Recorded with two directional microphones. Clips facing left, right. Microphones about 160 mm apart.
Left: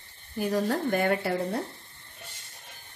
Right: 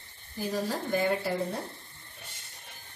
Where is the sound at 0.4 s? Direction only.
60° left (ahead or behind).